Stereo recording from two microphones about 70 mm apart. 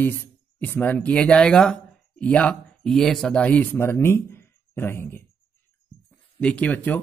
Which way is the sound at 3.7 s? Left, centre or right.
Left.